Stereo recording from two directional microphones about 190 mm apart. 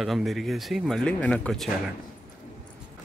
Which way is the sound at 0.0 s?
Centre (ahead or behind).